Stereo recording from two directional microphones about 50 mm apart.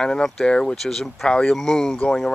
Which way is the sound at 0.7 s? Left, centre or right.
Centre.